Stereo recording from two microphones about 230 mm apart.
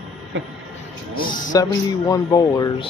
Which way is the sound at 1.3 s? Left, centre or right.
Left.